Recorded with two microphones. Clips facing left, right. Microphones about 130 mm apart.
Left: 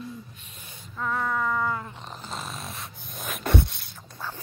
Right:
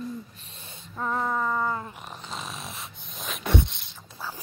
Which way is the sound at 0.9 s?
25° right (ahead or behind).